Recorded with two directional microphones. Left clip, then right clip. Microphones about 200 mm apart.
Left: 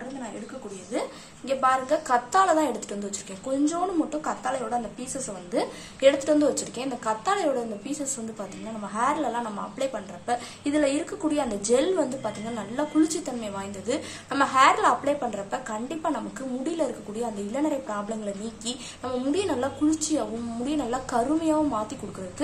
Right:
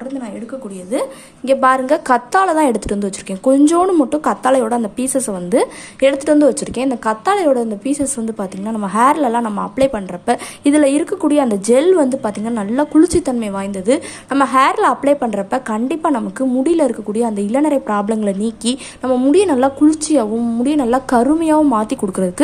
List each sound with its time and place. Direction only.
0.9 s a woman's voice: 50° right (ahead or behind)